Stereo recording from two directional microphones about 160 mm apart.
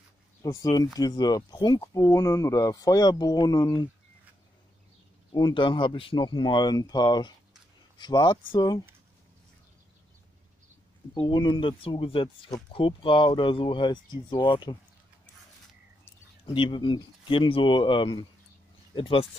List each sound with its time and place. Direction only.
0.4 s speech: 20° left (ahead or behind)
5.3 s speech: 30° left (ahead or behind)
11.1 s speech: 30° left (ahead or behind)
16.4 s speech: 30° left (ahead or behind)